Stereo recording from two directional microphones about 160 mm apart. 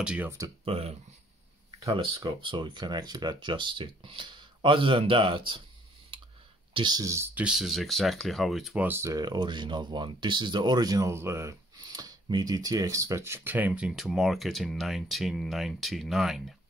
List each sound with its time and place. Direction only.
0.0 s speech: 10° right (ahead or behind)
0.7 s speech: 40° right (ahead or behind)
2.4 s speech: 30° right (ahead or behind)
6.1 s clicking: 30° right (ahead or behind)
6.7 s speech: 25° right (ahead or behind)
7.4 s speech: centre (ahead or behind)
8.8 s speech: 15° right (ahead or behind)